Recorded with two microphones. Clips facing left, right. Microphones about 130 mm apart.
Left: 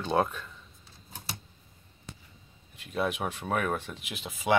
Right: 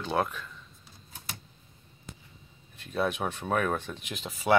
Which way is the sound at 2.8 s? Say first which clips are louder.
Right 1 dB; 10° left (ahead or behind).